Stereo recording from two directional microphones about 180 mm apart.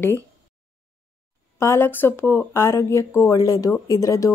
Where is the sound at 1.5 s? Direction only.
15° left (ahead or behind).